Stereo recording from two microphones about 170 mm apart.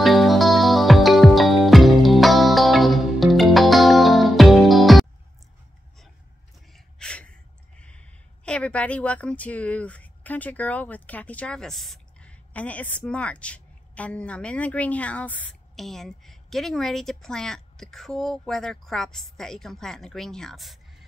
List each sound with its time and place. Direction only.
0.0 s music: centre (ahead or behind)
6.7 s gasp: 5° left (ahead or behind)
7.8 s a woman's voice: 5° left (ahead or behind)